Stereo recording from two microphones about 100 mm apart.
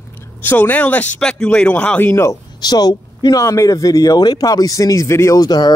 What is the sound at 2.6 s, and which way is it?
Speech, 40° left (ahead or behind).